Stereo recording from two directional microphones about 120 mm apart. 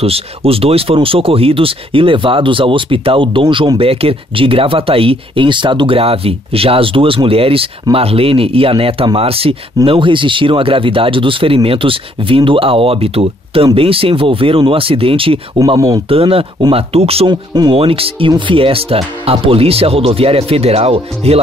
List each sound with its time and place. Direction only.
0.0 s speech: 55° right (ahead or behind)
15.6 s speech: 30° right (ahead or behind)
16.1 s speech: 50° right (ahead or behind)
17.3 s speech: 35° right (ahead or behind)
17.7 s speech: 50° right (ahead or behind)